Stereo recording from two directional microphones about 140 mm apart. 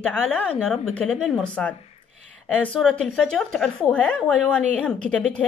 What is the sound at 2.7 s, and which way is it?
A woman's voice, centre (ahead or behind).